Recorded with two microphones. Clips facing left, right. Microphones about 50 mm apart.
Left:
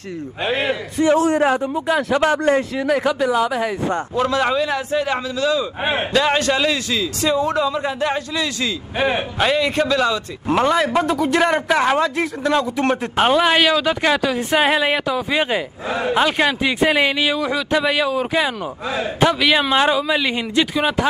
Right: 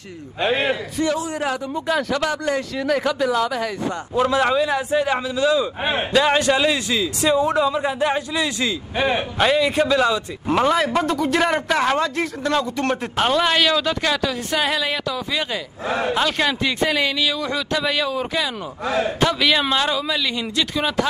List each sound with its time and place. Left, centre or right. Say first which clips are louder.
0.4 s a man's voice: right 1 dB; centre
1.1 s a man's voice: left 9 dB; left
1.4 s a man's voice: left 7 dB; left
1.7 s a man's voice: left 3 dB; centre
2.2 s a man's voice: left 6 dB; left
2.8 s a man's voice: left 2 dB; centre
4.6 s a man's voice: right 1 dB; centre
5.9 s a man's voice: left 1 dB; centre
6.5 s a man's voice: even; centre
8.9 s a man's voice: left 2 dB; centre
9.5 s a man's voice: even; centre
13.1 s a man's voice: left 3 dB; centre
20.7 s a man's voice: left 3 dB; centre